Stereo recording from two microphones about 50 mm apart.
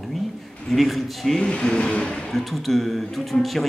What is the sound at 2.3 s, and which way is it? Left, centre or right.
A man's voice, centre.